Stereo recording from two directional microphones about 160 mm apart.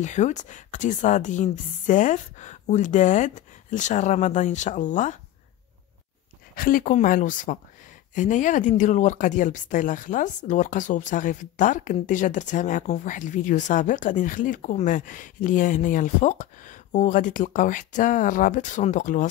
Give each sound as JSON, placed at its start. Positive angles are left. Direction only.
{"t": 0.0, "sound": "speech", "side_deg": 50}
{"t": 6.5, "sound": "speech", "side_deg": 60}